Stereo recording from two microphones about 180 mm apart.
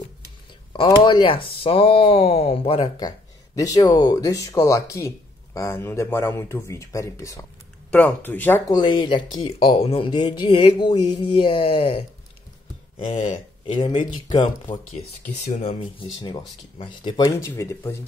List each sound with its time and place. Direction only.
0.7 s speech: 25° left (ahead or behind)
8.7 s speech: 25° left (ahead or behind)
13.7 s speech: 25° left (ahead or behind)
16.2 s speech: 25° left (ahead or behind)
17.4 s speech: 15° left (ahead or behind)